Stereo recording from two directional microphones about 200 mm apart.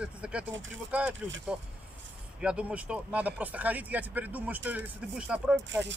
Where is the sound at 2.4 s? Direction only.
5° right (ahead or behind).